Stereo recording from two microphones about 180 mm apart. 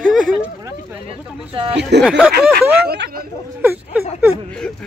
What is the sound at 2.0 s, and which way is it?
Speech, centre (ahead or behind).